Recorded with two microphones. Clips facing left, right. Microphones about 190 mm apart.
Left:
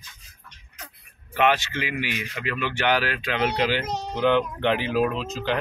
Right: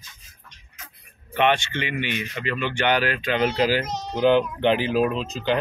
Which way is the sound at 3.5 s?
40° right (ahead or behind).